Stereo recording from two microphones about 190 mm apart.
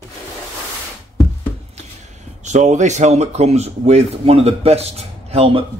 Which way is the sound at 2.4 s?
40° right (ahead or behind).